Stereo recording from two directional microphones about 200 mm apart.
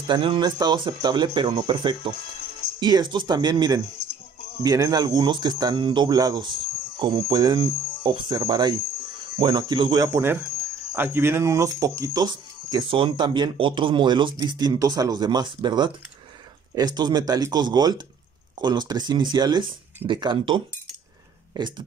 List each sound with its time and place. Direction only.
0.0 s speech: 25° right (ahead or behind)